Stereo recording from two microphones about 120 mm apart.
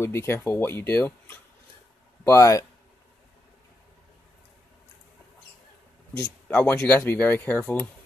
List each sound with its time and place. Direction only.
0.0 s speech: 20° left (ahead or behind)
6.5 s speech: 10° left (ahead or behind)